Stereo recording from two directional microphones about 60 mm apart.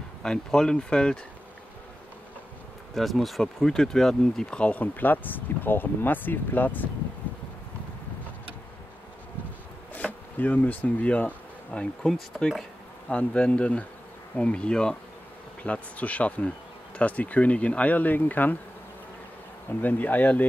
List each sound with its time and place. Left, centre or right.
0.2 s speech: centre
2.9 s speech: centre; by 6.9 s left
9.9 s speech: left
11.7 s speech: centre
13.1 s speech: left
19.7 s speech: left